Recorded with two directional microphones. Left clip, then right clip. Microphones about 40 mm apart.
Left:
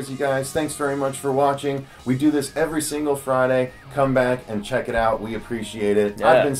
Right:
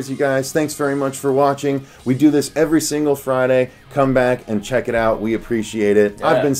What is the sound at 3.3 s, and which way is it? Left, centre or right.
Speech, right.